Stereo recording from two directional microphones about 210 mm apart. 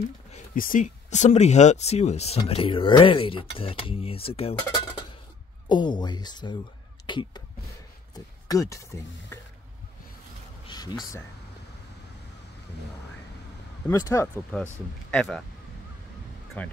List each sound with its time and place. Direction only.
0.3 s speech: 40° left (ahead or behind)
5.7 s speech: 20° left (ahead or behind)
10.7 s speech: 20° left (ahead or behind)
13.8 s speech: 15° left (ahead or behind)
16.6 s speech: 5° left (ahead or behind)